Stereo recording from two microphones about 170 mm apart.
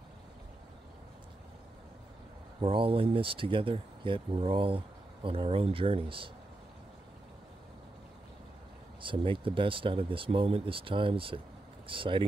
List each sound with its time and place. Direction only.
2.6 s speech: 30° right (ahead or behind)
9.0 s speech: 30° right (ahead or behind)